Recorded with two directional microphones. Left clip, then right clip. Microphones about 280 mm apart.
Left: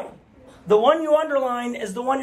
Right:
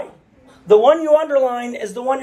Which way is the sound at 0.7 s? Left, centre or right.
Centre.